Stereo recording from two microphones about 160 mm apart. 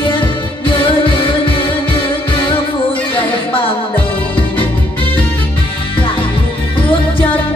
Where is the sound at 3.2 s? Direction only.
35° left (ahead or behind).